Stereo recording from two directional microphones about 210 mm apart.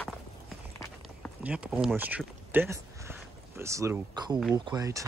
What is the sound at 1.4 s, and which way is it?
Speech, 5° right (ahead or behind).